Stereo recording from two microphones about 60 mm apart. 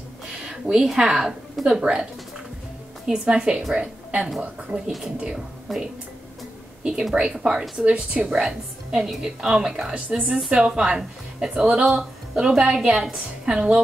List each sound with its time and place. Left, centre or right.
0.5 s speech: centre
3.1 s a woman's voice: centre
7.2 s a woman's voice: centre